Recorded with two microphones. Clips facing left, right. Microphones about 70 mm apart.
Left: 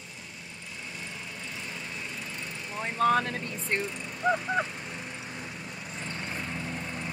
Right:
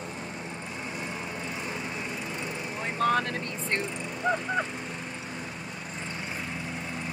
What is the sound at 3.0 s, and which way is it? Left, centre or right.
Vehicle, centre.